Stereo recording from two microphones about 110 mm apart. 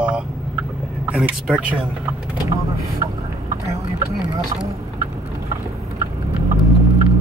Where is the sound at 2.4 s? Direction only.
30° right (ahead or behind).